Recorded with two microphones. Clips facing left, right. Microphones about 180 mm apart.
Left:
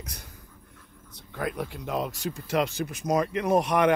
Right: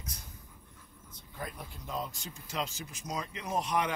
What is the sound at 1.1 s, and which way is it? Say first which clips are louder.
Speech: left 11 dB; 80° left.